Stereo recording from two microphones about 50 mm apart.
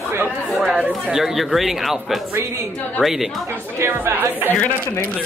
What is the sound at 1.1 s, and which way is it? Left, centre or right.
Speech, centre.